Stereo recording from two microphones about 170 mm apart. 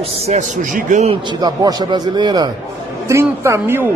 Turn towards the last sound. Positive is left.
turn(degrees=-15)  # may be behind; listen again after turning